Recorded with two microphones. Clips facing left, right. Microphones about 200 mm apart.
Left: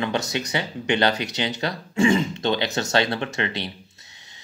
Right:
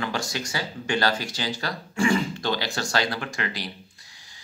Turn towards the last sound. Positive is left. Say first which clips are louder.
# left 4 dB
turn(degrees=25)  # may be behind; listen again after turning